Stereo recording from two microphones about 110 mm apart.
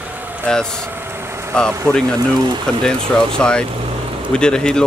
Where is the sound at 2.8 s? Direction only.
5° left (ahead or behind).